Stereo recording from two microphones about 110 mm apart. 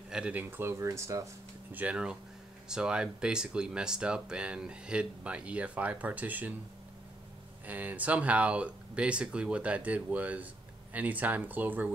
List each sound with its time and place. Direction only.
0.1 s speech: 10° right (ahead or behind); by 1.3 s 25° right (ahead or behind)
1.7 s speech: 15° right (ahead or behind)
7.6 s speech: 15° right (ahead or behind)